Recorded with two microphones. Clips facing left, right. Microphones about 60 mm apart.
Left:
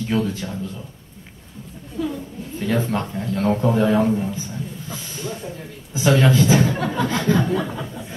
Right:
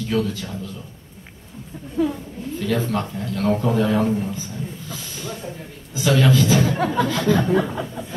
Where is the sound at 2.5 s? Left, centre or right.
Left.